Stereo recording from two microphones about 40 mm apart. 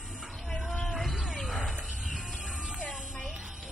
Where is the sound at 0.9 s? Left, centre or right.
Centre.